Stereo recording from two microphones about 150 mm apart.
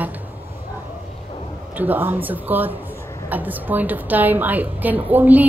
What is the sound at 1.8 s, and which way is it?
A woman's voice, 15° right (ahead or behind).